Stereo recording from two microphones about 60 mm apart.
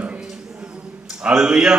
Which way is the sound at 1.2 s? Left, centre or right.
Centre.